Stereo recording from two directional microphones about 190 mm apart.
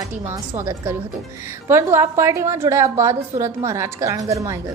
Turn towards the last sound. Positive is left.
turn(degrees=-15)  # may be behind; listen again after turning